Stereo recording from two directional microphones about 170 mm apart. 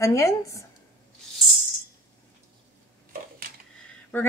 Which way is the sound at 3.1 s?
60° right (ahead or behind).